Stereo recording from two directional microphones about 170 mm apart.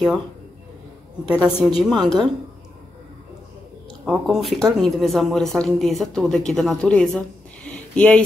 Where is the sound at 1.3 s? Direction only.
5° right (ahead or behind).